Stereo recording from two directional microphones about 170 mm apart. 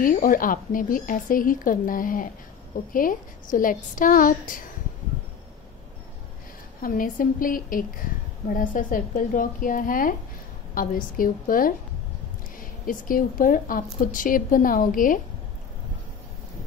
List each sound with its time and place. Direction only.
0.0 s speech: 55° left (ahead or behind)
6.8 s a woman's voice: 55° left (ahead or behind)